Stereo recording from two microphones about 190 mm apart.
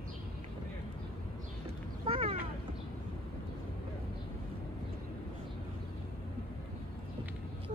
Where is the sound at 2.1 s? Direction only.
30° right (ahead or behind).